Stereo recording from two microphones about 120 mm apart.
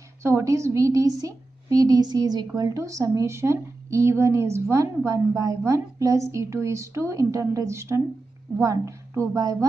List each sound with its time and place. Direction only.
0.2 s a woman's voice: 25° right (ahead or behind)